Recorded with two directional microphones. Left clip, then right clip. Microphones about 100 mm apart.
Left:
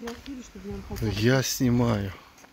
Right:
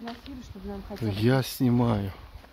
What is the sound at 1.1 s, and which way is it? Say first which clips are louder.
Speech: left 2 dB; 10° right (ahead or behind).